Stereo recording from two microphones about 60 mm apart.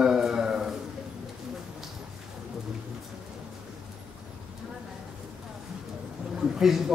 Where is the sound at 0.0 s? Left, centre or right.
Centre.